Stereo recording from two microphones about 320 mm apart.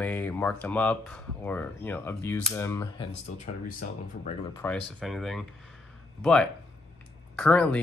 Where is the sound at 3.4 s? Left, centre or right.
Left.